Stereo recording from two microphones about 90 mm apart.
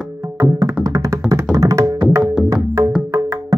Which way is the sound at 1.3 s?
35° right (ahead or behind).